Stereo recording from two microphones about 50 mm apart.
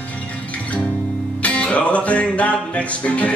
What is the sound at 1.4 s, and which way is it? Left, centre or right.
Music, left.